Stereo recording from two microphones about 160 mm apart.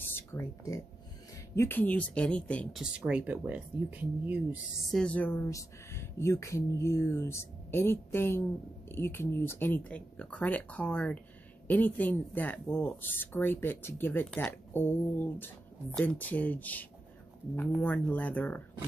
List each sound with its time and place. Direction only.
0.1 s speech: 15° left (ahead or behind)
2.8 s speech: 5° right (ahead or behind)
4.9 s speech: 10° left (ahead or behind)